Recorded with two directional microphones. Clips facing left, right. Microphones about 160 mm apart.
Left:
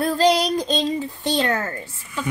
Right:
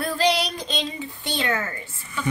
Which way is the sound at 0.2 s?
45° left (ahead or behind).